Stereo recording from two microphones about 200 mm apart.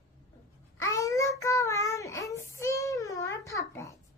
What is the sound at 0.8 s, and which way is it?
Child singing, 15° left (ahead or behind).